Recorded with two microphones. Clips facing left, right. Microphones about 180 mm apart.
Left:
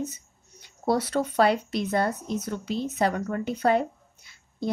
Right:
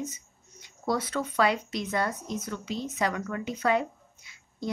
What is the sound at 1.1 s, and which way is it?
Speech, 35° left (ahead or behind).